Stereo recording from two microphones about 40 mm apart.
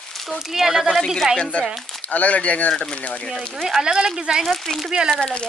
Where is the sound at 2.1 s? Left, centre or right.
Left.